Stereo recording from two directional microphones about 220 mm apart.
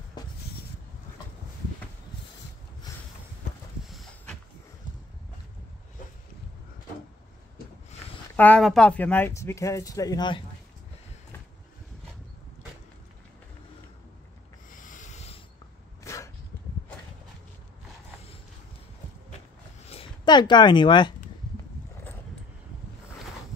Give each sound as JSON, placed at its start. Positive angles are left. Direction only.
{"t": 0.2, "sound": "a sound", "side_deg": 20}
{"t": 8.4, "sound": "speech", "side_deg": 5}
{"t": 14.7, "sound": "snort", "side_deg": 35}
{"t": 16.0, "sound": "dog", "side_deg": 15}
{"t": 19.9, "sound": "speech", "side_deg": 25}